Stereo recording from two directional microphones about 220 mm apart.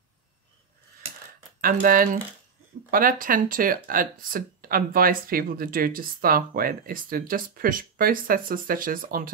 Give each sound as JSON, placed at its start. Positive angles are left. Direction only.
{"t": 1.6, "sound": "speech", "side_deg": -40}